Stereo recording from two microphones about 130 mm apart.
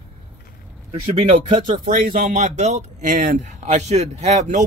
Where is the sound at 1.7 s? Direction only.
90° right; by 4.6 s 60° right (ahead or behind).